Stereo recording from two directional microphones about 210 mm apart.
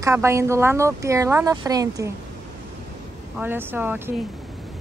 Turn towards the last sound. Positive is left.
turn(degrees=-10)  # may be behind; listen again after turning